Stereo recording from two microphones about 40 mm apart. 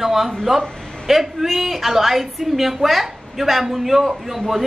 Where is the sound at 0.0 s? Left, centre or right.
Centre.